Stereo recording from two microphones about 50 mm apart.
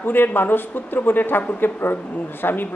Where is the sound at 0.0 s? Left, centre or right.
Left.